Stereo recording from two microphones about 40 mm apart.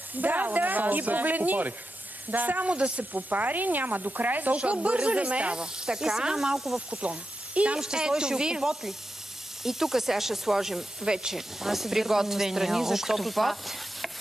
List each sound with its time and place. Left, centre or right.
0.1 s speech: right
2.7 s speech: right
3.1 s speech: right
4.6 s speech: right
5.6 s speech: centre
6.9 s speech: right
7.8 s speech: centre